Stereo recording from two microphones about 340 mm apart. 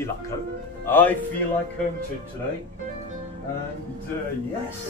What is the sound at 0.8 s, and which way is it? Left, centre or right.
Speech, centre.